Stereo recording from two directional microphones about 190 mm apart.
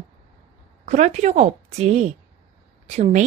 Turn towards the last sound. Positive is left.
turn(degrees=-35)  # may be behind; listen again after turning